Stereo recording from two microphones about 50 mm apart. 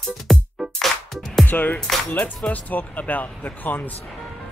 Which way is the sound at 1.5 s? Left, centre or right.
Left.